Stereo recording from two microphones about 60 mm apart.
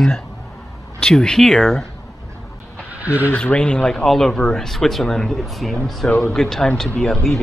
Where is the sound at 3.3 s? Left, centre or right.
Centre.